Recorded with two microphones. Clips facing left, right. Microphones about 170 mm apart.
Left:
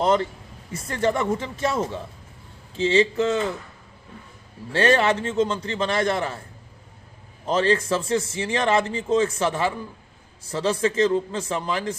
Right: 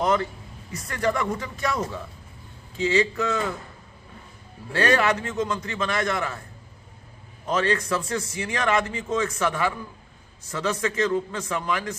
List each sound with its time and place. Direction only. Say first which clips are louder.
0.0 s a man's voice: left 2 dB; 25° left (ahead or behind)
4.7 s a man's voice: left 2 dB; 25° left (ahead or behind)
7.4 s a man's voice: left 3 dB; 30° left (ahead or behind)